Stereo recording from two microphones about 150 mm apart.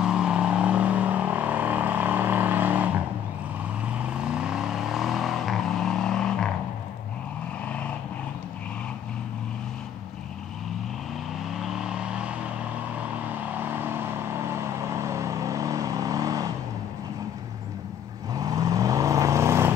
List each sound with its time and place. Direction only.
0.0 s vehicle: 5° right (ahead or behind)
4.0 s vehicle: 5° right (ahead or behind)
11.6 s vehicle: 5° right (ahead or behind)
13.6 s vehicle: 15° right (ahead or behind)
18.3 s vehicle: 25° right (ahead or behind)